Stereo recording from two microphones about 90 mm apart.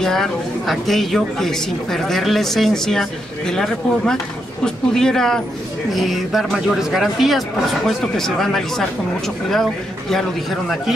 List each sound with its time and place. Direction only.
0.0 s a woman's voice: 5° left (ahead or behind)